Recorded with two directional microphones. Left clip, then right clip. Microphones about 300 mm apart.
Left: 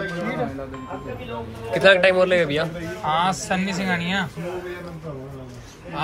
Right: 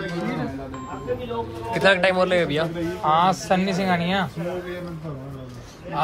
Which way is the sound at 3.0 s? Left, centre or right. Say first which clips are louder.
Right 3 dB; right.